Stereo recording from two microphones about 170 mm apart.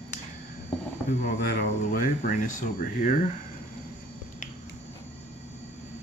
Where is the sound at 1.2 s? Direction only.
60° left (ahead or behind).